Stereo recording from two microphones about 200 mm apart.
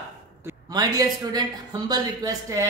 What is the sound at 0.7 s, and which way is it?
A woman's voice, 20° right (ahead or behind).